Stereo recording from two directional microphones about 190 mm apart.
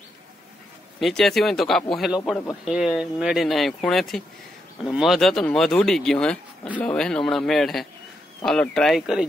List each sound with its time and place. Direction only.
0.9 s speech: centre (ahead or behind)